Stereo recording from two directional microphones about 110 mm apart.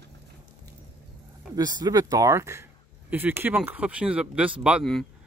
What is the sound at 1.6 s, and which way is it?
Speech, 35° right (ahead or behind).